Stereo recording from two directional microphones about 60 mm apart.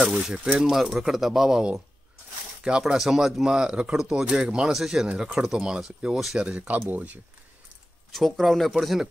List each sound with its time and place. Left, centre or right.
0.1 s speech: centre
2.8 s speech: centre
6.4 s speech: centre
6.7 s speech: right
8.1 s speech: centre